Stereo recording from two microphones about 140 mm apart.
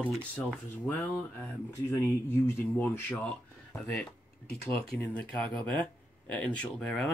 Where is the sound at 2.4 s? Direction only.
15° left (ahead or behind).